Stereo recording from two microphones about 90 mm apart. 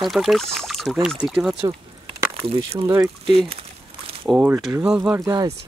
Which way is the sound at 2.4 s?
90° right.